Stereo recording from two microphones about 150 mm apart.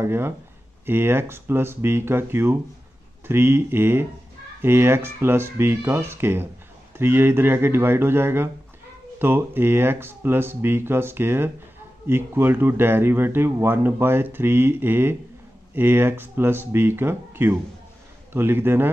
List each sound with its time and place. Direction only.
0.0 s speech: 15° right (ahead or behind)